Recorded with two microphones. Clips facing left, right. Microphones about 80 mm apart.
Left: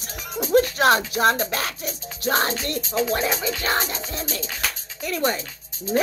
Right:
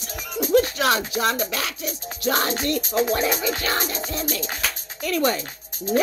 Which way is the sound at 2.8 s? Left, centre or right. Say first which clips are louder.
Left 1 dB; right.